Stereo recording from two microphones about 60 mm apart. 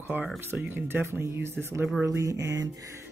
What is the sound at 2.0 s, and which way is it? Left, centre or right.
Speech, right.